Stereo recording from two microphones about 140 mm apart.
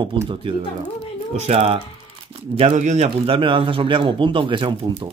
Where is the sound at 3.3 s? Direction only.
35° right (ahead or behind).